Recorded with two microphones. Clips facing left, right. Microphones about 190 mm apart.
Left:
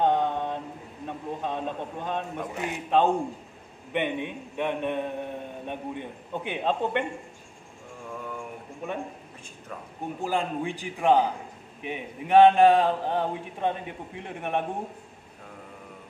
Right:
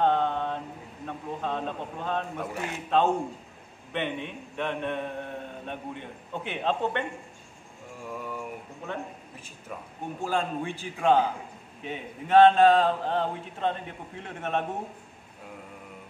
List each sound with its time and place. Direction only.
0.0 s mantra: 15° left (ahead or behind)
1.0 s a man's voice: 15° left (ahead or behind)
8.2 s a sound: 5° right (ahead or behind)
10.2 s a man's voice: 15° left (ahead or behind)